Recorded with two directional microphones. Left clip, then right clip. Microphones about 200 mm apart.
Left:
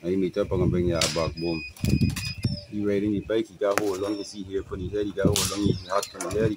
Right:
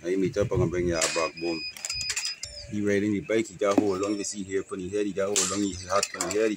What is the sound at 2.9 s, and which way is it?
Speech, 5° right (ahead or behind).